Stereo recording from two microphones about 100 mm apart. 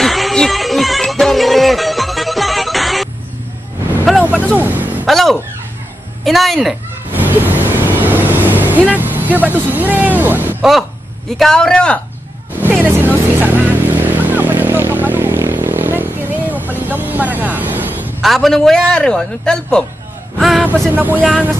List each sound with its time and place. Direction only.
0.0 s music: centre (ahead or behind)
4.2 s vehicle: 15° right (ahead or behind)
4.6 s a sound: 20° right (ahead or behind)
5.0 s a sound: centre (ahead or behind)
7.1 s vehicle: 20° right (ahead or behind)
10.6 s a man's voice: centre (ahead or behind)
12.6 s vehicle: 20° right (ahead or behind)
18.2 s a man's voice: centre (ahead or behind)
20.3 s vehicle: centre (ahead or behind)
20.9 s speech: 20° right (ahead or behind)